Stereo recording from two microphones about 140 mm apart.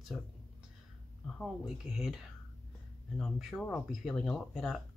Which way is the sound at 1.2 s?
5° left (ahead or behind).